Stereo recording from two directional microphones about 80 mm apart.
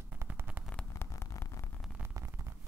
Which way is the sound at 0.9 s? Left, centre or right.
Left.